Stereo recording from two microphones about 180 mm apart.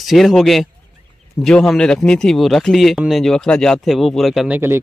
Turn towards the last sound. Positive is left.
turn(degrees=-10)  # may be behind; listen again after turning